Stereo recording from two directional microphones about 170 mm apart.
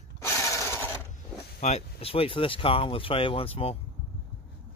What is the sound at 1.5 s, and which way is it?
Speech, 40° left (ahead or behind).